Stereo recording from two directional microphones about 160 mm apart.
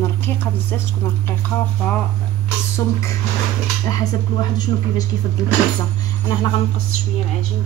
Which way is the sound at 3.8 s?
25° left (ahead or behind).